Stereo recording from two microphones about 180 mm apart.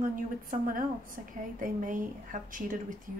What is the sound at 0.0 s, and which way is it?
A woman's voice, 50° right (ahead or behind).